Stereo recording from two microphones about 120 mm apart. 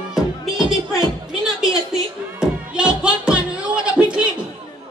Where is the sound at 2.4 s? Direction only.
10° right (ahead or behind).